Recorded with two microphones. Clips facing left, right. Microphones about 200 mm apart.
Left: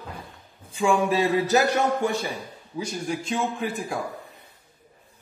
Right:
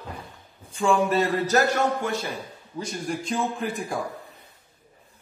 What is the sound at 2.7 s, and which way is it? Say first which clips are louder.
A man's voice: left 1 dB; 5° left (ahead or behind).